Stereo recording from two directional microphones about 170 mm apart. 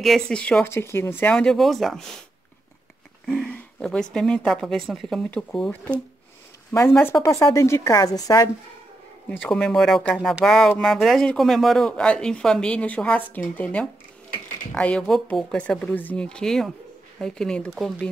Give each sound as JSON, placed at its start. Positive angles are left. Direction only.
{"t": 0.0, "sound": "a woman's voice", "side_deg": 5}
{"t": 3.3, "sound": "a woman's voice", "side_deg": 5}
{"t": 6.7, "sound": "a woman's voice", "side_deg": 15}
{"t": 9.3, "sound": "a woman's voice", "side_deg": 5}